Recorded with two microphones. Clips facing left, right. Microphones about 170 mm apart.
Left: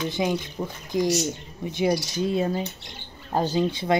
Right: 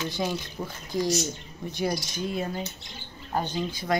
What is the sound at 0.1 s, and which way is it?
Speech, 15° left (ahead or behind).